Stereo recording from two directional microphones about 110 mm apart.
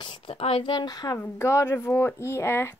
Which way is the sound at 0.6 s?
45° left (ahead or behind).